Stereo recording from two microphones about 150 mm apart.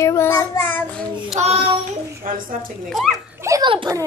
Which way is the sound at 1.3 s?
45° right (ahead or behind).